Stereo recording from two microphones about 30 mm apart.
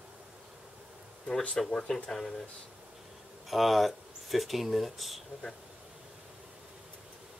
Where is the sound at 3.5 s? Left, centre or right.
Centre.